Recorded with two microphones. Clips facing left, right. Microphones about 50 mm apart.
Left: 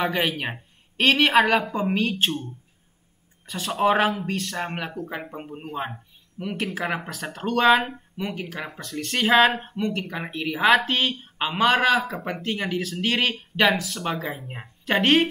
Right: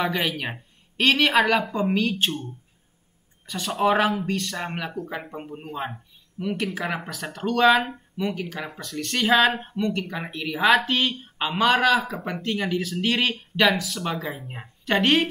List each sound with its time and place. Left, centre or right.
0.0 s speech: centre
3.4 s speech: centre